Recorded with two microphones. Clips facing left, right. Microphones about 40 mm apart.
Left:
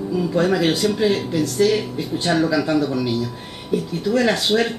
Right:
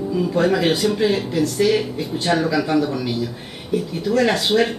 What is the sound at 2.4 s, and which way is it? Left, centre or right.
Speech, right.